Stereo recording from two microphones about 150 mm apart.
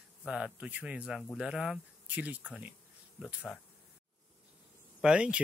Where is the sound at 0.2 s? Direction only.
5° right (ahead or behind).